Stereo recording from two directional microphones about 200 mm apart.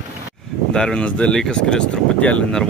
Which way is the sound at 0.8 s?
5° left (ahead or behind).